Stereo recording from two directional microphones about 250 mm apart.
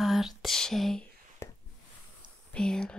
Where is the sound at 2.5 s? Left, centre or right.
Centre.